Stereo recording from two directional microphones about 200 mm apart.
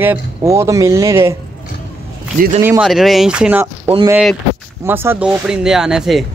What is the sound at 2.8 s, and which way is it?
Speech, centre (ahead or behind).